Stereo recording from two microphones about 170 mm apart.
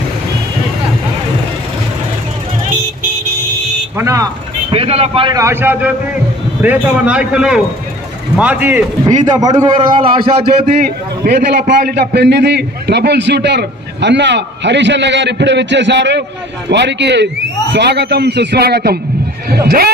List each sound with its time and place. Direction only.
3.9 s vehicle: 20° right (ahead or behind)
4.7 s a man's voice: 35° right (ahead or behind)
5.4 s a man's voice: 15° right (ahead or behind)
9.2 s a man's voice: 25° right (ahead or behind)
11.2 s a man's voice: 65° right (ahead or behind)